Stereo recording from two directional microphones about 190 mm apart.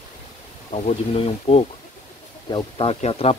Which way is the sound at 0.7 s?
35° left (ahead or behind).